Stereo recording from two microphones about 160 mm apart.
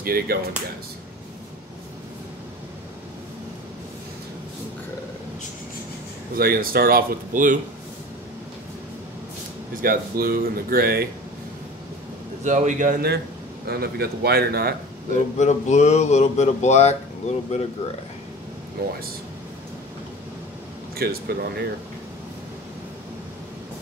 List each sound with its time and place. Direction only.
0.0 s speech: 70° right (ahead or behind)
6.3 s speech: 65° right (ahead or behind)
9.8 s speech: 65° right (ahead or behind)
12.4 s a man's voice: 50° right (ahead or behind); by 14.8 s 75° right (ahead or behind)
15.3 s speech: 45° left (ahead or behind)
20.9 s speech: 75° right (ahead or behind)